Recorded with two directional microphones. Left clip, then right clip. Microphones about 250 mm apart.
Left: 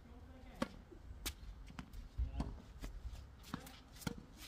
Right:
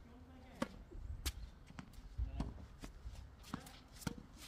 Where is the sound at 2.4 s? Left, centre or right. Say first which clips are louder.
Left 1 dB; centre.